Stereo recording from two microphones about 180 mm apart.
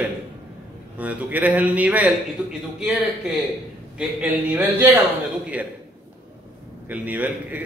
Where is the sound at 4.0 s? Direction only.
10° right (ahead or behind).